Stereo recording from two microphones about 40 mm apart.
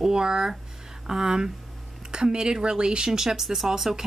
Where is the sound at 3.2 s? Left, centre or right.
Centre.